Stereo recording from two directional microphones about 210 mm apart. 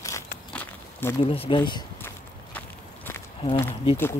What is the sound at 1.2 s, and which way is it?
Speech, 25° left (ahead or behind).